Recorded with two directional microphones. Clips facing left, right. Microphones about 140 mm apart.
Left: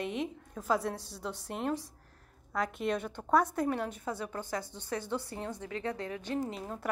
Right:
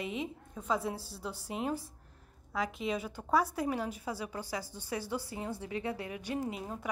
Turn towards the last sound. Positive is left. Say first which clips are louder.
# left 1 dB
turn(degrees=-10)  # may be behind; listen again after turning